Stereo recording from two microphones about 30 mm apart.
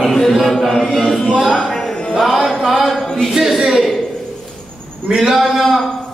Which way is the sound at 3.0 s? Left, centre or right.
Centre.